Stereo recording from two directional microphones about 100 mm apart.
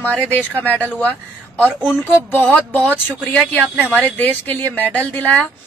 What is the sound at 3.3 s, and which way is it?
Speech, 10° left (ahead or behind).